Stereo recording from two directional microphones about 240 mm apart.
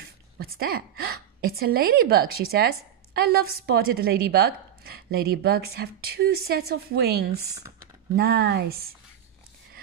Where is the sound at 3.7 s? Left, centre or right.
Right.